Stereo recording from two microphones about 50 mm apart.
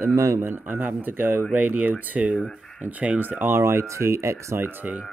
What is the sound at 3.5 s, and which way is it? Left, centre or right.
Speech, right.